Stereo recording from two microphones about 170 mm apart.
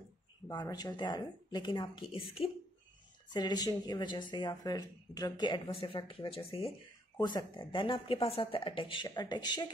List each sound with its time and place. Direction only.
0.5 s speech: 20° left (ahead or behind)